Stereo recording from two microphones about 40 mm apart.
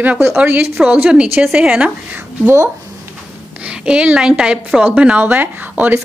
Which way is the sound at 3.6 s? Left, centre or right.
Right.